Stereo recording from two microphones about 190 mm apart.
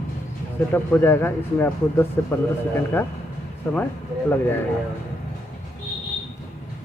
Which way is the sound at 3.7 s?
10° left (ahead or behind).